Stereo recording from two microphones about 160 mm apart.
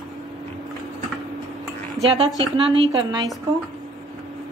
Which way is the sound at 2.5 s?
35° right (ahead or behind).